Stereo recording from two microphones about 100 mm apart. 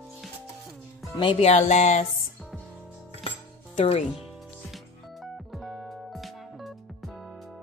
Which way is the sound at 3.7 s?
90° left.